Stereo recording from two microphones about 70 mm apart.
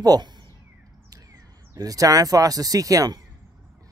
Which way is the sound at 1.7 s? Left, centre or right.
Right.